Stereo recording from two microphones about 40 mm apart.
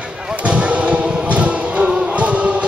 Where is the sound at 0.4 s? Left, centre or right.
Right.